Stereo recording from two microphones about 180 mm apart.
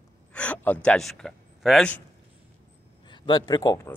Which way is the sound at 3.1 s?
25° left (ahead or behind).